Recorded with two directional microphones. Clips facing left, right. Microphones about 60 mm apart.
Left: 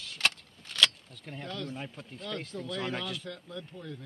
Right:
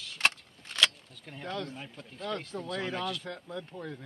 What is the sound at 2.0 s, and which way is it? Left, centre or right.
Speech, centre.